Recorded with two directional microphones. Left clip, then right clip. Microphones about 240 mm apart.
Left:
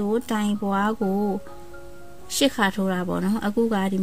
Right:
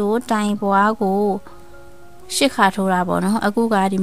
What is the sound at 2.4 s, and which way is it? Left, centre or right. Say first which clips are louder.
Speech: right 6 dB; right.